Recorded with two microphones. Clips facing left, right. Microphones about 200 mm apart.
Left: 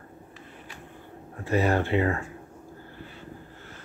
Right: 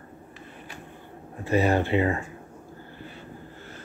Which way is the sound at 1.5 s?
15° right (ahead or behind).